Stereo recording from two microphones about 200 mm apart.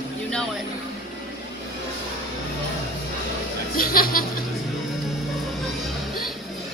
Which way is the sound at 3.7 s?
45° left (ahead or behind).